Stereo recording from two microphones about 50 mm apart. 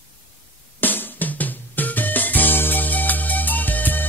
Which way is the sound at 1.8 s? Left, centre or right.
Left.